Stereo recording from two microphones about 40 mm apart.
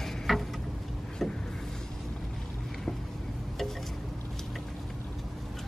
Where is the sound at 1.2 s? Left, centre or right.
Centre.